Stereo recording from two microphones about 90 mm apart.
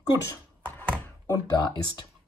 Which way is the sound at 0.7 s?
15° left (ahead or behind).